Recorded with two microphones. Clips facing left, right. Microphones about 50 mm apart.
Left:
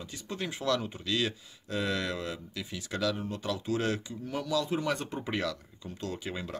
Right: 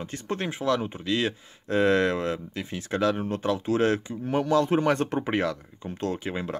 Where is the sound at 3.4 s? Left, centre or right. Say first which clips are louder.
Right 7 dB; right.